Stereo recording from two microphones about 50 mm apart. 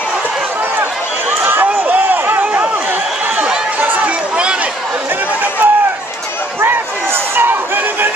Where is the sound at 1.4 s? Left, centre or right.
Right.